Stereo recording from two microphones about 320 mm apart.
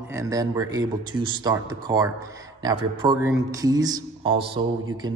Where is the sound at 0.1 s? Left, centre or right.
Centre.